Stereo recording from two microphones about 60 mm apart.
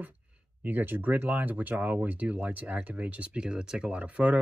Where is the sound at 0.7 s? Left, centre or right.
Right.